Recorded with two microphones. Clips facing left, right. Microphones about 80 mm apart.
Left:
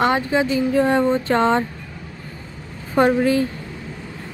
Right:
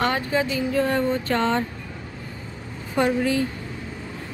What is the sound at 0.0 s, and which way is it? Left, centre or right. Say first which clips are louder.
Speech: left 4 dB; left.